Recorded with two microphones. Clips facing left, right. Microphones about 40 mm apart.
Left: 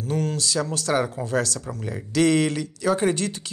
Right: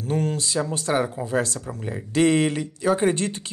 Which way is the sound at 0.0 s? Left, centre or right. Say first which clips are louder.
Right 1 dB; right.